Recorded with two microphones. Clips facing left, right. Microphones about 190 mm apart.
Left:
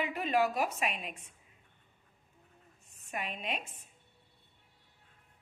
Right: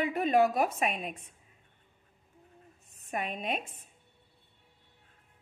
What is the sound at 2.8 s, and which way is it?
Speech, 50° right (ahead or behind).